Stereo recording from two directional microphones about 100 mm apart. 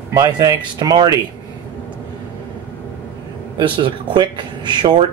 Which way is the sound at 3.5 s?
55° right (ahead or behind).